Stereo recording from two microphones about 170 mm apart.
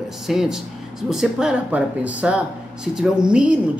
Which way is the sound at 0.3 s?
5° right (ahead or behind).